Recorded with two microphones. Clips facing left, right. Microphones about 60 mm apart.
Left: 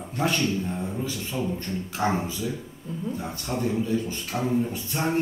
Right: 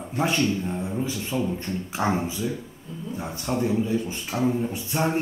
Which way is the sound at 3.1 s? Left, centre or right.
Centre.